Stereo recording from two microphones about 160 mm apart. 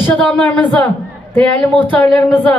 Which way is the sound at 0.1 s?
5° left (ahead or behind).